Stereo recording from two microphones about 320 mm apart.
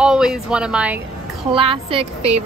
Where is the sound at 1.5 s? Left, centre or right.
Centre.